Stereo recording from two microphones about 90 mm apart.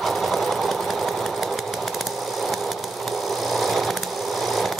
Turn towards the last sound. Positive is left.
turn(degrees=0)  # may be behind; listen again after turning